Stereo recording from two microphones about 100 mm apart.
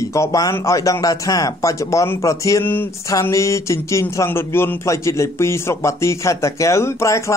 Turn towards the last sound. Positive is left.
turn(degrees=30)  # may be behind; listen again after turning